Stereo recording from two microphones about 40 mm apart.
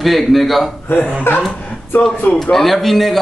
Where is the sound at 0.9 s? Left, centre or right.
Left.